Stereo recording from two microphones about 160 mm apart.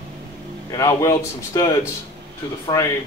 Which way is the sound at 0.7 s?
20° left (ahead or behind).